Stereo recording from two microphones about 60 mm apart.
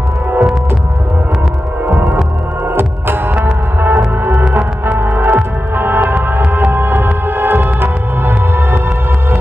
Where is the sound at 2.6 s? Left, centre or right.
Right.